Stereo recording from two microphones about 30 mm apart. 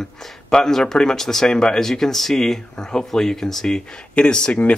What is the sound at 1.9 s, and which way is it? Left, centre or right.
Speech, centre.